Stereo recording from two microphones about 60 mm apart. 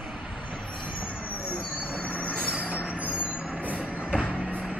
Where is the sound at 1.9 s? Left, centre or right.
Left.